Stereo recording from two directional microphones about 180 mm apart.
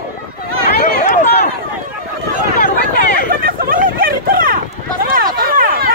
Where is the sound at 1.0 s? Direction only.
45° left (ahead or behind).